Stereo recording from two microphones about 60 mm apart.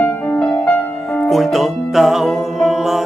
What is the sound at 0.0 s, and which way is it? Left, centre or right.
Music, centre.